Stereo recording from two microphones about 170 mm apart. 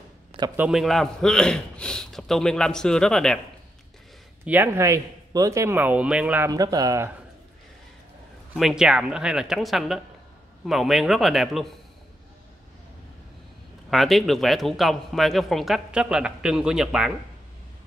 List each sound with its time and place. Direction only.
0.6 s speech: centre (ahead or behind)
4.5 s speech: 15° right (ahead or behind)
6.5 s speech: 20° right (ahead or behind)
8.5 s speech: 5° right (ahead or behind)
13.8 s speech: centre (ahead or behind)